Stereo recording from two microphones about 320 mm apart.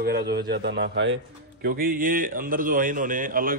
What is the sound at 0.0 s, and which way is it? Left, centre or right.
A man's voice, right.